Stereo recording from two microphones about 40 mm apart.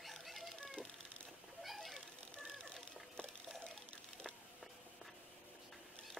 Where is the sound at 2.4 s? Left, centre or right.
Centre.